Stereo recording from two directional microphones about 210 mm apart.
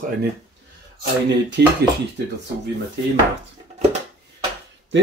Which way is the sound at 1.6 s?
55° right (ahead or behind).